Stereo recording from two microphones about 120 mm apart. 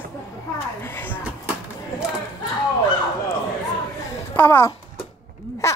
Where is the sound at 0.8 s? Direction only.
20° left (ahead or behind).